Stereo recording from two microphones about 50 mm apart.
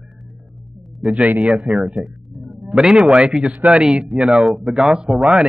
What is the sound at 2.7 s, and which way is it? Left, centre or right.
A man's voice, centre.